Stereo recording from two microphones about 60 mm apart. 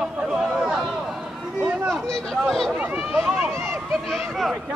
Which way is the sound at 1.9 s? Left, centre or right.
Centre.